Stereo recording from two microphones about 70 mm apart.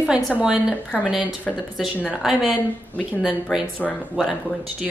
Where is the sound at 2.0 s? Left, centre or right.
Centre.